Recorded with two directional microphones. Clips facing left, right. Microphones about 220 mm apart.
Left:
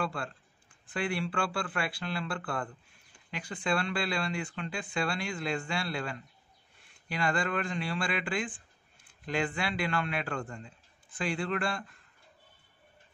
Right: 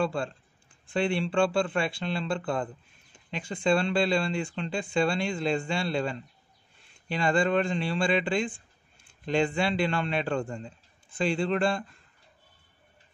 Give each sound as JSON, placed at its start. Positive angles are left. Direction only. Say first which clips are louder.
{"t": 0.0, "sound": "a man's voice", "louder": "right 6 dB", "side_deg": -25}